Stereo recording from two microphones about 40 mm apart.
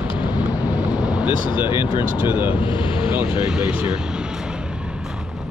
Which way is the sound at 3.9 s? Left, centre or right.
Centre.